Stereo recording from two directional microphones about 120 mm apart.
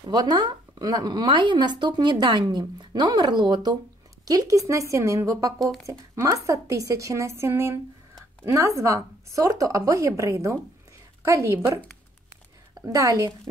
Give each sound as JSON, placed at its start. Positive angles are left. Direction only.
{"t": 0.1, "sound": "a woman's voice", "side_deg": -35}
{"t": 5.6, "sound": "speech", "side_deg": 0}
{"t": 5.9, "sound": "a woman's voice", "side_deg": -30}